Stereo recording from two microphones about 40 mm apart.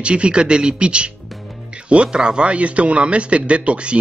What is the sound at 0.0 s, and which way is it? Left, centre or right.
A man's voice, right.